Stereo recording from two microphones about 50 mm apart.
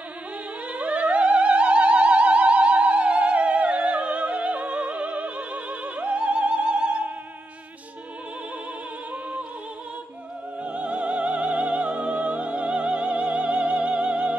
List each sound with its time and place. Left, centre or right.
0.7 s music: right
10.6 s music: right